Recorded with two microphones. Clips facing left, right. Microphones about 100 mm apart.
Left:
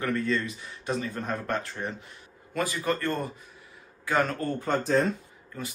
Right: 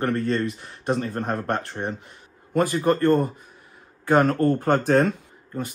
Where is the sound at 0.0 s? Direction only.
50° right (ahead or behind).